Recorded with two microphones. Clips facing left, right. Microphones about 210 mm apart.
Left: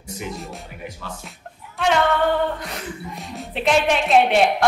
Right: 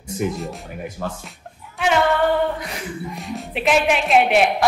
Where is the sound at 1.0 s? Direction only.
50° right (ahead or behind).